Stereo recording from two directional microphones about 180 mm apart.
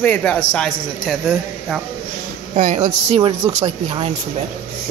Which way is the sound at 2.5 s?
40° right (ahead or behind).